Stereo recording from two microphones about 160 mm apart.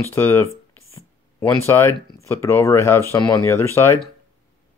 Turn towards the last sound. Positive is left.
turn(degrees=15)  # may be behind; listen again after turning